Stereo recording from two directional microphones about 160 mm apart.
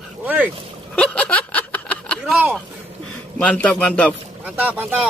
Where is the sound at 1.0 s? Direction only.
10° left (ahead or behind).